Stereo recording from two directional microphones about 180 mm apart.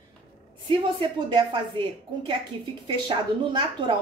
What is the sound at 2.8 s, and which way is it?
A woman's voice, 25° right (ahead or behind).